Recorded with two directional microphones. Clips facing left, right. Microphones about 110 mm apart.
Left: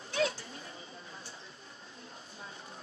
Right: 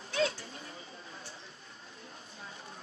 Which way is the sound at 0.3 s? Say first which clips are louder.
Left 1 dB; 25° left (ahead or behind).